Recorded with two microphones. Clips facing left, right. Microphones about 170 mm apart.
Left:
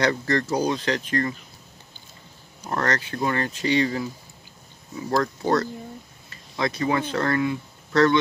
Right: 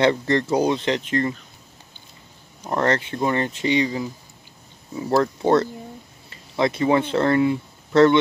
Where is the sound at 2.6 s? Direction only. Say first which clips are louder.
Right 4 dB; 20° right (ahead or behind).